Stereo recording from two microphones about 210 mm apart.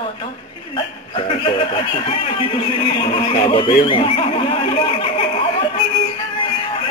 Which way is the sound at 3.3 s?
25° left (ahead or behind).